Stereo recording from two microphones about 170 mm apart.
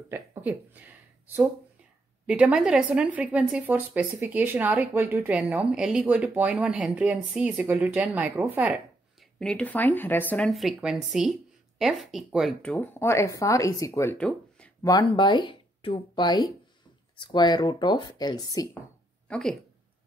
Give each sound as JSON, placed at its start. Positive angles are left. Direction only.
{"t": 0.1, "sound": "a woman's voice", "side_deg": -10}
{"t": 9.4, "sound": "speech", "side_deg": 5}
{"t": 14.1, "sound": "speech", "side_deg": 5}
{"t": 14.8, "sound": "speech", "side_deg": 25}
{"t": 19.2, "sound": "speech", "side_deg": 5}